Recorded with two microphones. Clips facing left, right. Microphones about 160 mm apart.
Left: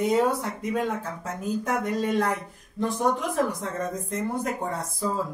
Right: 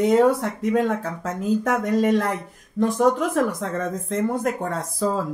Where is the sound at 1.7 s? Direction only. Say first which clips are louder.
Right 6 dB; 90° right.